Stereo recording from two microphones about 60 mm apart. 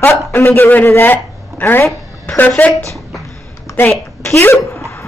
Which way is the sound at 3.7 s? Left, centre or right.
Left.